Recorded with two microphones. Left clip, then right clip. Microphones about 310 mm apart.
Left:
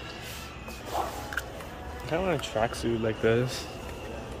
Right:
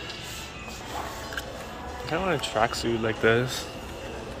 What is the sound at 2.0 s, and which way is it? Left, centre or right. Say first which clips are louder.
Speech: right 2 dB; centre.